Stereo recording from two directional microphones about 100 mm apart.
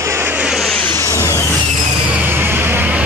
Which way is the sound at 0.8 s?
20° left (ahead or behind).